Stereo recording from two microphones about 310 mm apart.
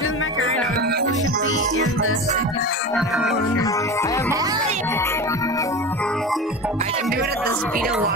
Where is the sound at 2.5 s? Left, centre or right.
Left.